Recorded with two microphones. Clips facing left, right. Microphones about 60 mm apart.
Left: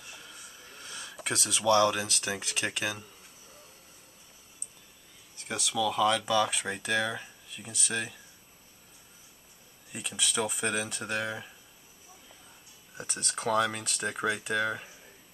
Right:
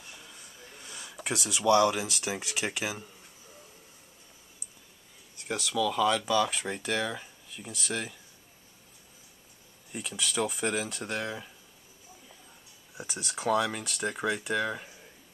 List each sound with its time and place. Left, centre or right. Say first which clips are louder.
0.3 s a sound: left 1 dB; centre
2.4 s speech: even; centre
5.4 s speech: right 1 dB; centre
9.9 s speech: right 1 dB; centre
12.9 s speech: even; centre